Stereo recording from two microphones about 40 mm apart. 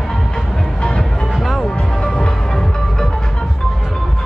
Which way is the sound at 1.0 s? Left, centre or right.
Centre.